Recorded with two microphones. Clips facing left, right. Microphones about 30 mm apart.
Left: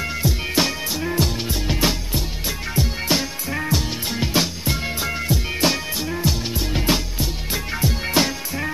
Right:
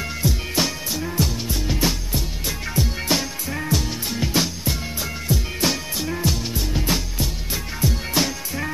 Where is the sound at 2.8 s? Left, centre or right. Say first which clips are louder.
Left 1 dB; centre.